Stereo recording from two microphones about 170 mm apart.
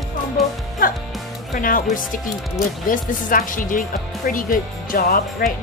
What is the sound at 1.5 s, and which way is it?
A woman's voice, 55° left (ahead or behind).